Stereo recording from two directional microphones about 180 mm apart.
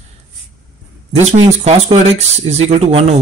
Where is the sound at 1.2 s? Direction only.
40° right (ahead or behind).